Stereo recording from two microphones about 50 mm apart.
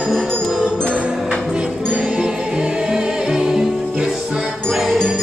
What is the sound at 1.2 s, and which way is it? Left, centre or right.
Music, centre.